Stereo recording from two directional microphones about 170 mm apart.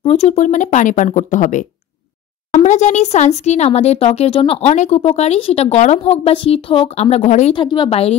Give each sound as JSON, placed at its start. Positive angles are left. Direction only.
{"t": 0.0, "sound": "speech", "side_deg": 35}
{"t": 7.5, "sound": "a woman's voice", "side_deg": 30}